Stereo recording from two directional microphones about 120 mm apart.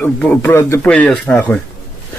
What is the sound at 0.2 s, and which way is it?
Speech, 15° left (ahead or behind).